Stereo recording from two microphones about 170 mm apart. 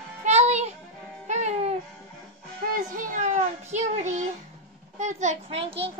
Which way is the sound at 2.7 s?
50° right (ahead or behind).